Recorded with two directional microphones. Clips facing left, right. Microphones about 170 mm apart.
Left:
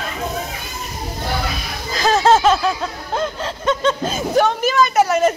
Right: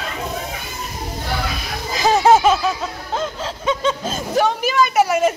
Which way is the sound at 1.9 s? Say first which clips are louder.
Right 1 dB; 15° right (ahead or behind).